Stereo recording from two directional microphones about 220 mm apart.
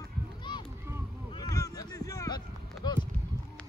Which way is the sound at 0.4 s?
20° left (ahead or behind).